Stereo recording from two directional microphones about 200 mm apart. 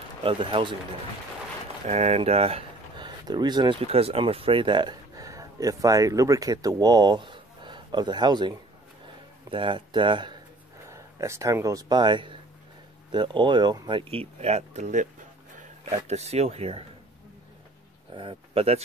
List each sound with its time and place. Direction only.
0.2 s speech: 25° right (ahead or behind)
1.9 s speech: 35° right (ahead or behind)
16.1 s speech: 30° right (ahead or behind)
18.1 s speech: 25° right (ahead or behind)